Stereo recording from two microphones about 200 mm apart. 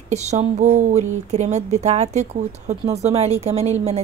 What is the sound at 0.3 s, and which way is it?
A woman's voice, 35° right (ahead or behind).